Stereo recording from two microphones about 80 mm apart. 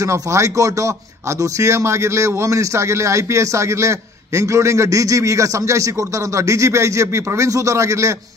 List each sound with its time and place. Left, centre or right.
0.0 s speech: right